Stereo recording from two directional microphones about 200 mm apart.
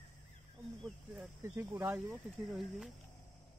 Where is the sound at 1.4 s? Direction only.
15° right (ahead or behind).